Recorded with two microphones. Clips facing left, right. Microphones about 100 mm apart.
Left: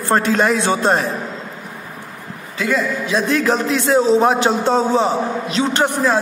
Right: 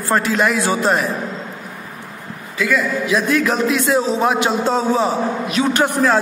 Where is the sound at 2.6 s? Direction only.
30° left (ahead or behind).